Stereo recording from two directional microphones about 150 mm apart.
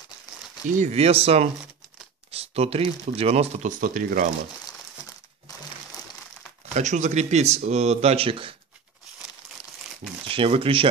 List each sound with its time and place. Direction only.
0.7 s speech: 45° right (ahead or behind); by 4.3 s 65° right (ahead or behind)
6.7 s speech: 50° right (ahead or behind)
10.2 s speech: 35° right (ahead or behind)